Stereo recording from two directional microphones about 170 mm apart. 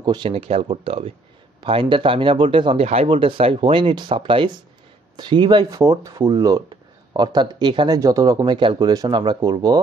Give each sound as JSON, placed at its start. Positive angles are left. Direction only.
{"t": 0.0, "sound": "a man's voice", "side_deg": -25}